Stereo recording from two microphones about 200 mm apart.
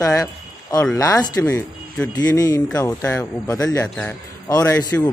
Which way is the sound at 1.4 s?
5° left (ahead or behind).